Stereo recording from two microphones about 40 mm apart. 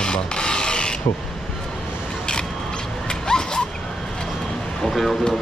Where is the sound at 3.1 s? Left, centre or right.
Centre.